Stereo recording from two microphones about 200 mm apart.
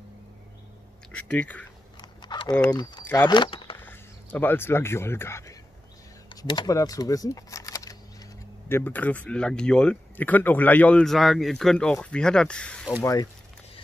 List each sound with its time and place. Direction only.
1.1 s speech: 5° left (ahead or behind)
2.0 s a sound: 20° left (ahead or behind)
2.7 s speech: 20° left (ahead or behind)
3.7 s speech: 10° left (ahead or behind)
13.0 s speech: 15° left (ahead or behind)